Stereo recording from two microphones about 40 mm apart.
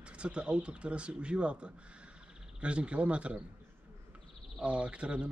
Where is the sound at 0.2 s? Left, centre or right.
Right.